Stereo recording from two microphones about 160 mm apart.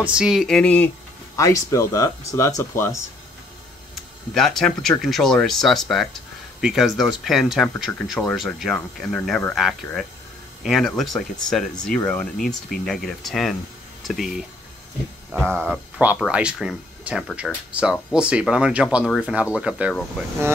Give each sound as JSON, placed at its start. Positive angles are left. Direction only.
{"t": 0.0, "sound": "speech", "side_deg": -5}
{"t": 1.3, "sound": "speech", "side_deg": 20}
{"t": 3.9, "sound": "speech", "side_deg": 0}
{"t": 15.6, "sound": "speech", "side_deg": -10}